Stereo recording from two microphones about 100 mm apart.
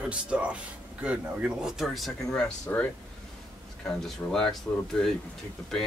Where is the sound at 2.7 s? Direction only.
15° left (ahead or behind).